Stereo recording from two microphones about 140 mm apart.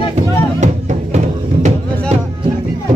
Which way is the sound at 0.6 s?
60° right (ahead or behind).